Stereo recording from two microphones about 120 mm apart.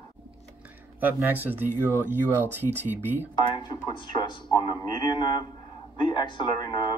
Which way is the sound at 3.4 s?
35° left (ahead or behind).